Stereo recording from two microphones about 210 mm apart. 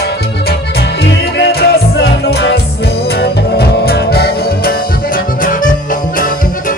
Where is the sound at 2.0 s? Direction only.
50° left (ahead or behind).